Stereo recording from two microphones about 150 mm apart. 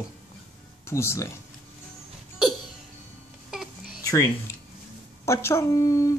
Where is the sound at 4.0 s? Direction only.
20° left (ahead or behind).